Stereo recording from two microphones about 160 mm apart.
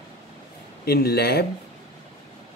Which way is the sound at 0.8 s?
75° left (ahead or behind).